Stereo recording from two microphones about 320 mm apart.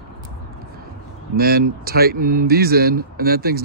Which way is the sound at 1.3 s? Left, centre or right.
Right.